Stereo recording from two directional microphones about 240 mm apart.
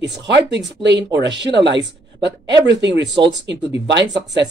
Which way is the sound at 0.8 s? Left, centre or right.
Right.